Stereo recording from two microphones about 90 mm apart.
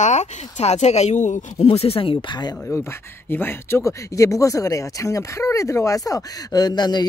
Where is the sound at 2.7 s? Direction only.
25° left (ahead or behind).